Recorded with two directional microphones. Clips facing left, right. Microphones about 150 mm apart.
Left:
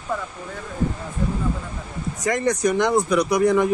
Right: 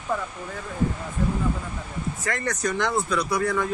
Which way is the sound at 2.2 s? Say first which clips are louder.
Left 8 dB; 15° left (ahead or behind).